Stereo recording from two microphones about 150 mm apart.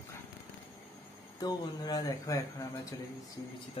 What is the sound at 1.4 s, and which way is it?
Speech, 25° left (ahead or behind).